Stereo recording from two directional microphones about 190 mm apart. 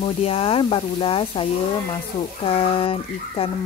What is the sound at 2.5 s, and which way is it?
Speech, 30° left (ahead or behind).